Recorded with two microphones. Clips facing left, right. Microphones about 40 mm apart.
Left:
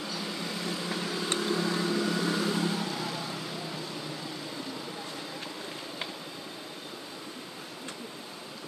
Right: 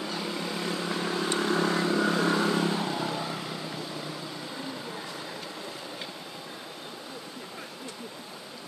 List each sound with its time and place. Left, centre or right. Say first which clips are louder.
0.6 s vehicle: right 3 dB; right
1.4 s vehicle: right 4 dB; right